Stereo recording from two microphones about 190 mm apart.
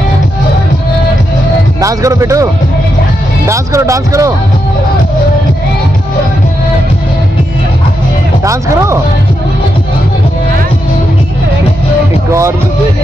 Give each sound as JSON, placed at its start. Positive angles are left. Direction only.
{"t": 1.8, "sound": "speech", "side_deg": -15}
{"t": 8.5, "sound": "speech", "side_deg": -15}
{"t": 12.3, "sound": "speech", "side_deg": -15}